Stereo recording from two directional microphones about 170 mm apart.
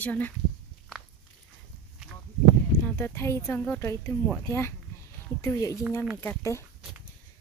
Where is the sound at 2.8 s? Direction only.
15° left (ahead or behind).